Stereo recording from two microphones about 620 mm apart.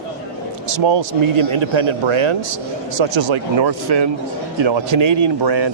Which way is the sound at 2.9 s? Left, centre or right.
Right.